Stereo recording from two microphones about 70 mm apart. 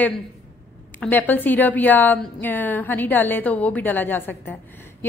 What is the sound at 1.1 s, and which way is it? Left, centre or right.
A woman's voice, left.